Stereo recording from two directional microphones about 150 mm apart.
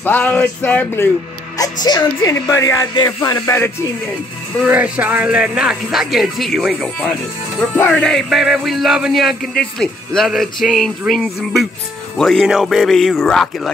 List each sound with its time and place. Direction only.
0.0 s music: 10° left (ahead or behind)
1.6 s speech: 25° left (ahead or behind)
4.6 s music: 10° right (ahead or behind)